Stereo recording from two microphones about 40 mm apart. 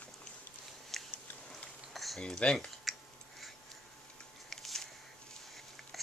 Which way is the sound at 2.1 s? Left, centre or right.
Centre.